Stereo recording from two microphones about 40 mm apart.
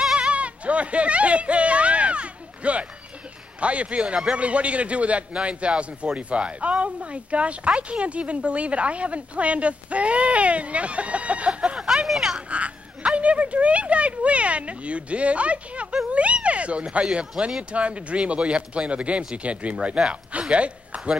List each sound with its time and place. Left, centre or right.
0.1 s goat: right
3.6 s speech: right
11.7 s a sound: centre
12.4 s speech: right